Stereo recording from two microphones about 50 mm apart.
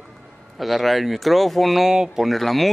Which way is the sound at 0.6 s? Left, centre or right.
Centre.